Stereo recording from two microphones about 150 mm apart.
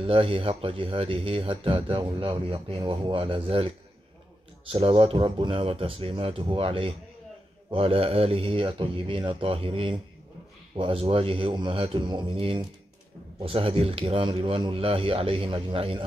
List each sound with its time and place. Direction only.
0.0 s speech: 40° right (ahead or behind)
4.7 s speech: 35° right (ahead or behind)